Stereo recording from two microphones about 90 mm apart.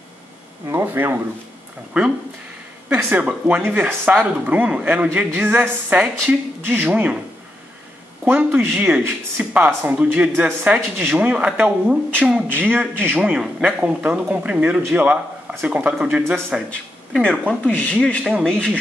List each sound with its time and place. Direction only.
0.7 s speech: 25° right (ahead or behind)
2.9 s speech: 20° right (ahead or behind)
8.3 s speech: 15° right (ahead or behind)
12.6 s speech: 20° right (ahead or behind)
17.1 s speech: 10° left (ahead or behind)